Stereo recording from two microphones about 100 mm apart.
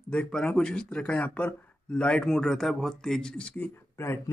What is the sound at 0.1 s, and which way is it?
A man's voice, 10° left (ahead or behind).